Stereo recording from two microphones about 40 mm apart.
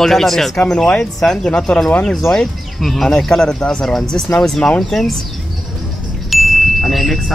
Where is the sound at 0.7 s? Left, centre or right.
Centre.